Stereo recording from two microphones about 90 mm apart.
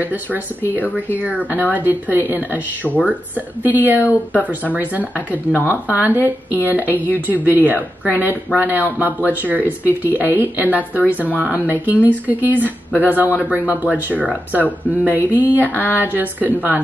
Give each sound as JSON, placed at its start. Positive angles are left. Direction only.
{"t": 0.0, "sound": "speech", "side_deg": -20}
{"t": 15.7, "sound": "a sound", "side_deg": 20}
{"t": 16.1, "sound": "speech", "side_deg": -20}